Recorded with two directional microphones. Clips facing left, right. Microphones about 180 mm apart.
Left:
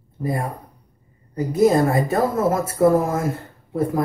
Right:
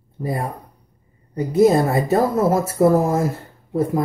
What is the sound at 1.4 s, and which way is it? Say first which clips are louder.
Speech: right 1 dB; 25° right (ahead or behind).